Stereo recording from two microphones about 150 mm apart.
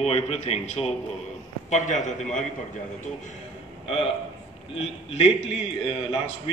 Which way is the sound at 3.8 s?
40° left (ahead or behind).